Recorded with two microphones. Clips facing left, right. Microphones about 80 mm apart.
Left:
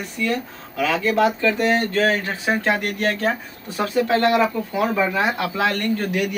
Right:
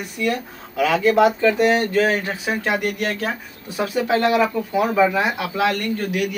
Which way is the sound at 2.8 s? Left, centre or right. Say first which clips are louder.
Left 1 dB; left.